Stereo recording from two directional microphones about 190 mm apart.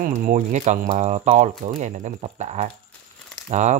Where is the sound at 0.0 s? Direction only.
40° right (ahead or behind).